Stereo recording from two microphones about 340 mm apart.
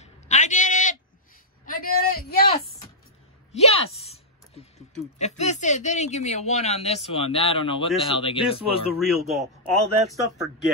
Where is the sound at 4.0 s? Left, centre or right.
Centre.